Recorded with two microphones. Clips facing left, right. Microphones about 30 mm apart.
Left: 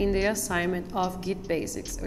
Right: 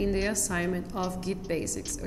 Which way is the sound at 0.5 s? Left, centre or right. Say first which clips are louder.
Left 3 dB; centre.